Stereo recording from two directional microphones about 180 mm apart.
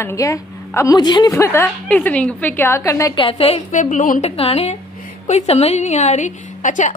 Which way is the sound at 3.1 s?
30° left (ahead or behind).